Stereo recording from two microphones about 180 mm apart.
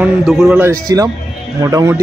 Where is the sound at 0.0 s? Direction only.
5° right (ahead or behind).